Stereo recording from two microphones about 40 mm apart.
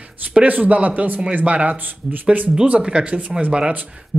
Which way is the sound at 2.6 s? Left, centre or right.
Right.